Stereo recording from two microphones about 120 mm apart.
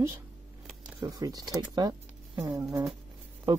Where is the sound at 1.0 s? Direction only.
30° right (ahead or behind).